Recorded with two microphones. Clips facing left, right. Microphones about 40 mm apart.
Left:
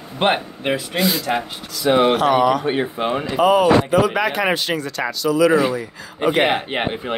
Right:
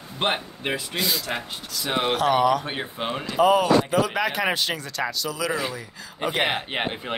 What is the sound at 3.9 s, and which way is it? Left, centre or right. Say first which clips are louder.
Speech: left 6 dB; left.